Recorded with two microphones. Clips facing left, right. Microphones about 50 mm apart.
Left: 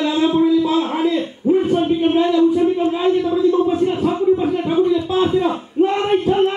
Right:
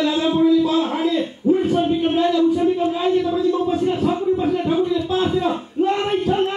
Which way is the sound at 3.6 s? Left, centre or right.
Centre.